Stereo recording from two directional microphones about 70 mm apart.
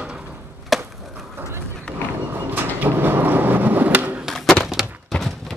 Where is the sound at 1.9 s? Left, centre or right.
Centre.